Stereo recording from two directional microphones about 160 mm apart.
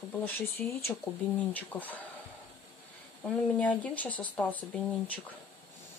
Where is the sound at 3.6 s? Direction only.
10° left (ahead or behind).